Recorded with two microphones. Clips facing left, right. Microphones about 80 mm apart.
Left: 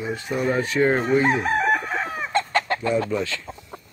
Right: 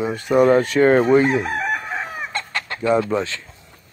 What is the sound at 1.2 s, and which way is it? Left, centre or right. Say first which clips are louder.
Chicken: right 1 dB; centre.